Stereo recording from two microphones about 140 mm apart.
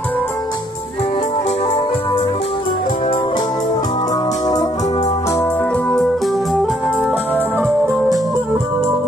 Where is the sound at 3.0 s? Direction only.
40° left (ahead or behind); by 7.3 s 5° right (ahead or behind).